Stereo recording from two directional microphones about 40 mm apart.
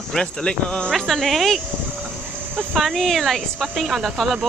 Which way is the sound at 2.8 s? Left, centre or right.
Centre.